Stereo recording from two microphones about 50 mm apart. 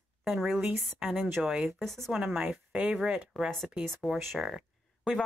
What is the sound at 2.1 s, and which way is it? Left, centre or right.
Speech, centre.